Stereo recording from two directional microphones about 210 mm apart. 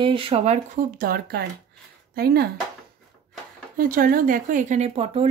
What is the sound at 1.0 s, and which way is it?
Speech, 45° right (ahead or behind).